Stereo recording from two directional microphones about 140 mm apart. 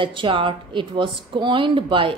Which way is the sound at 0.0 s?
35° right (ahead or behind).